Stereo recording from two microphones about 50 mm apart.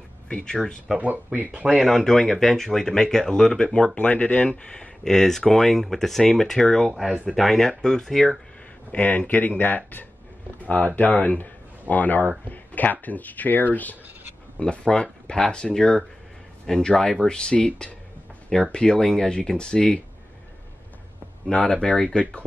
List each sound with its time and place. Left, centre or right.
0.3 s speech: centre
0.9 s speech: right
1.9 s speech: centre
3.9 s speech: left
4.5 s speech: centre
6.9 s speech: centre
7.2 s speech: centre
8.9 s speech: left
14.6 s speech: left
21.5 s speech: left
21.8 s speech: centre